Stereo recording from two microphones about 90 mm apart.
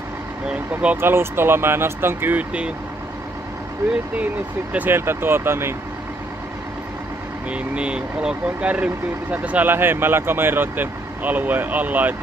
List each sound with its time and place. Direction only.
0.5 s speech: 15° right (ahead or behind)
1.1 s speech: 25° right (ahead or behind)
4.7 s speech: 25° right (ahead or behind)
7.4 s speech: 15° right (ahead or behind)